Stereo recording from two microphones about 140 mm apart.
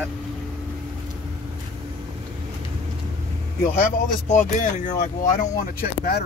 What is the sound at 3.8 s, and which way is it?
Speech, 70° left (ahead or behind).